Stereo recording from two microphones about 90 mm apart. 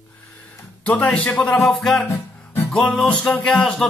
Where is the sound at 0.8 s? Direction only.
15° left (ahead or behind).